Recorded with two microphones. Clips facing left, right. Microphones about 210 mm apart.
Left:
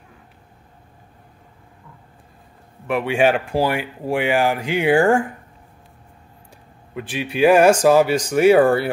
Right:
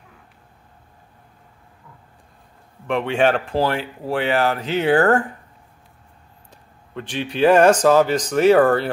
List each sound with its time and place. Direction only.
2.9 s speech: 10° left (ahead or behind)
6.9 s speech: 10° left (ahead or behind)